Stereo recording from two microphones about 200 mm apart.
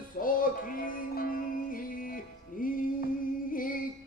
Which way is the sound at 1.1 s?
45° left (ahead or behind).